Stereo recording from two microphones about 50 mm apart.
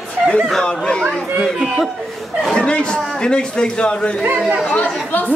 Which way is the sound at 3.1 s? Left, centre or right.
Centre.